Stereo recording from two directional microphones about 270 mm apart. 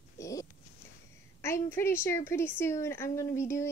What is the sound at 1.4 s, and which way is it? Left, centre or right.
A woman's voice, centre.